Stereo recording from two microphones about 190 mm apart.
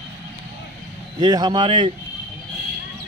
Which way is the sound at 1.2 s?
20° right (ahead or behind).